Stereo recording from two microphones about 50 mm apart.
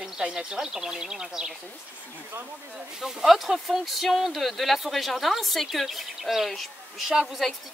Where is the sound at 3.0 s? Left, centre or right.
Centre.